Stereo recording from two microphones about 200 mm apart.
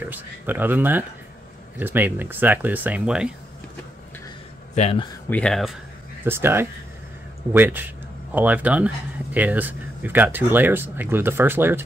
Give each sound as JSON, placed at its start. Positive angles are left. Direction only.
{"t": 0.0, "sound": "speech", "side_deg": -10}
{"t": 4.7, "sound": "speech", "side_deg": 30}
{"t": 5.3, "sound": "speech", "side_deg": 5}
{"t": 6.2, "sound": "speech", "side_deg": -10}